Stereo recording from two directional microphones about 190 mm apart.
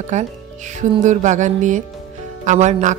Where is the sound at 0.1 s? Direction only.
40° right (ahead or behind).